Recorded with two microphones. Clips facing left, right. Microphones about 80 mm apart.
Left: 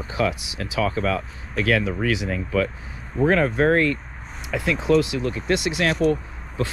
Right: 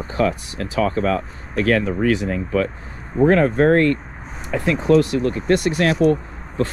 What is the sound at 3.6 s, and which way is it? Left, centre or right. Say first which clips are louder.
Speech: right 4 dB; right.